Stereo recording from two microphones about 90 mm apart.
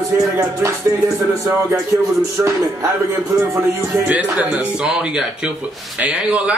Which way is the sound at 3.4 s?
35° right (ahead or behind).